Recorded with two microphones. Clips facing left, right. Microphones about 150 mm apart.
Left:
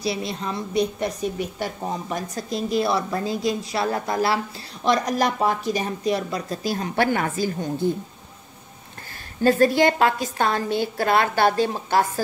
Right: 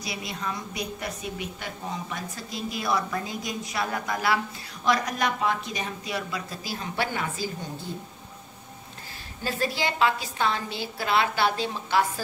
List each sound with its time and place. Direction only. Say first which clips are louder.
0.0 s a woman's voice: left 7 dB; 35° left (ahead or behind)
6.7 s a woman's voice: left 8 dB; 50° left (ahead or behind)
9.4 s a woman's voice: left 12 dB; 50° left (ahead or behind)